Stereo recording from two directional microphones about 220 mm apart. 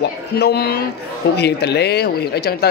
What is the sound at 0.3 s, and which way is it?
Speech, 45° left (ahead or behind).